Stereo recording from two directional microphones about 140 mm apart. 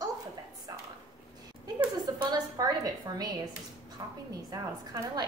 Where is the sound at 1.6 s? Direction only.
25° right (ahead or behind).